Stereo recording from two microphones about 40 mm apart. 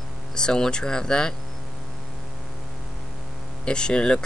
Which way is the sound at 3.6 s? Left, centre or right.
Left.